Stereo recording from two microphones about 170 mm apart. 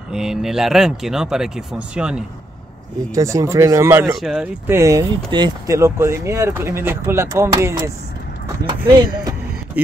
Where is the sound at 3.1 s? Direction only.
20° right (ahead or behind).